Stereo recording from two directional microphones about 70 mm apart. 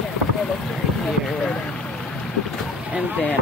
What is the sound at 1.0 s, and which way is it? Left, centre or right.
Speech, centre.